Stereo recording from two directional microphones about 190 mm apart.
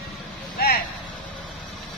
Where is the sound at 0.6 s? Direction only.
55° left (ahead or behind).